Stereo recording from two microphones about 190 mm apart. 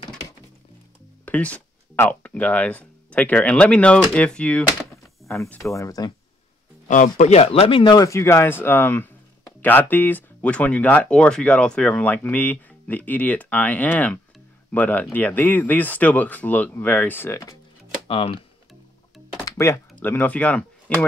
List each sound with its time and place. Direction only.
1.2 s speech: 10° left (ahead or behind)
6.9 s speech: 40° left (ahead or behind); by 17.6 s 15° left (ahead or behind)
18.0 s speech: 30° left (ahead or behind)
19.4 s a sound: 15° left (ahead or behind)
19.9 s speech: 10° left (ahead or behind)